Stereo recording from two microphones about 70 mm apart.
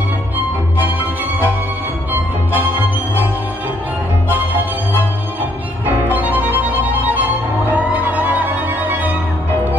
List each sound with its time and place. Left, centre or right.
0.7 s music: right
2.5 s music: right
4.3 s music: right